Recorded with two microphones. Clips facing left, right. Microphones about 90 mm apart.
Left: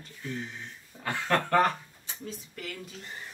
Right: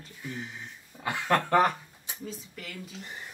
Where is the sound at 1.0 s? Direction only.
10° right (ahead or behind).